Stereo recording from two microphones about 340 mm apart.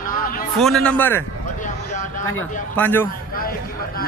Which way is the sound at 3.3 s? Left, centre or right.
Left.